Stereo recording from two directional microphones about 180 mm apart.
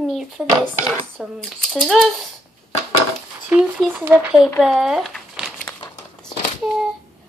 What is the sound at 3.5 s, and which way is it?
A woman's voice, 5° right (ahead or behind).